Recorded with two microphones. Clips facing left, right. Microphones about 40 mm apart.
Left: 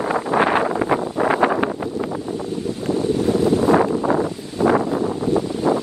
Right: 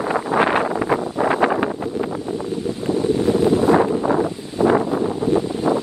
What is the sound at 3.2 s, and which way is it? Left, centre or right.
Wind noise, right.